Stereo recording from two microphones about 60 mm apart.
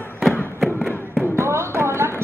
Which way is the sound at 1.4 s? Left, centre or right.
Right.